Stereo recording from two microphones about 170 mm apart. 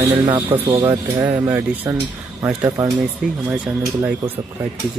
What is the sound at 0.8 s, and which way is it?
Speech, 15° right (ahead or behind).